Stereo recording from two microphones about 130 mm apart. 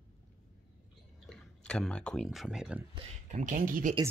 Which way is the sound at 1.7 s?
5° left (ahead or behind).